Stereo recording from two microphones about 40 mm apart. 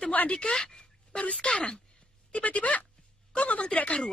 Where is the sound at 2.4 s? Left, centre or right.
Left.